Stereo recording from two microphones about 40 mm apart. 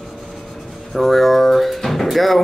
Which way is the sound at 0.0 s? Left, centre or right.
Centre.